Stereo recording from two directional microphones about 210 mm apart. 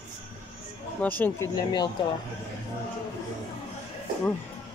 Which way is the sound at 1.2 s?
15° left (ahead or behind).